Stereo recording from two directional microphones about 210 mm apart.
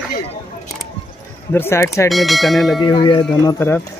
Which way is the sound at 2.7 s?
20° left (ahead or behind).